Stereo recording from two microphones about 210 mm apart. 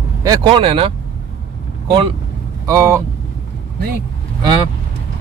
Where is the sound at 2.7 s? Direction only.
15° right (ahead or behind).